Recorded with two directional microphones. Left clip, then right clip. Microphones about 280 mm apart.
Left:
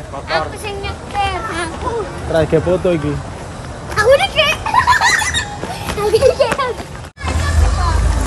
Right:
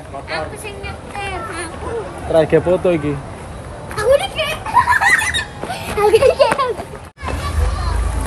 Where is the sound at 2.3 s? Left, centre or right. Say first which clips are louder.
Right 1 dB; centre.